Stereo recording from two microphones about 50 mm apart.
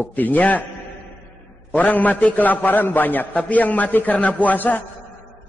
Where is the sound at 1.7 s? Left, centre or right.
Left.